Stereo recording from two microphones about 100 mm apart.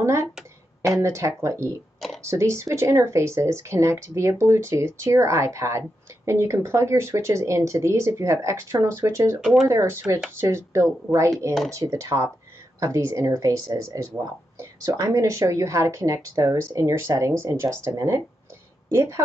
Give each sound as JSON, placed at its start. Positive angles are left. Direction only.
{"t": 0.0, "sound": "speech", "side_deg": -30}
{"t": 9.4, "sound": "speech", "side_deg": -5}
{"t": 9.7, "sound": "speech", "side_deg": -25}